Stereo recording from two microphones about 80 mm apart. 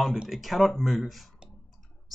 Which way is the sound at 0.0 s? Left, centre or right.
Centre.